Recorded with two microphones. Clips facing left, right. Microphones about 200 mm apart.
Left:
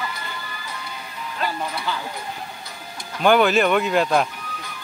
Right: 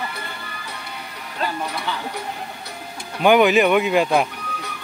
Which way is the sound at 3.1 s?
15° right (ahead or behind).